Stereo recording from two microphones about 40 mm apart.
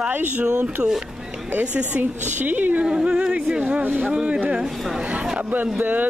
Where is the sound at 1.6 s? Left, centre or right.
Right.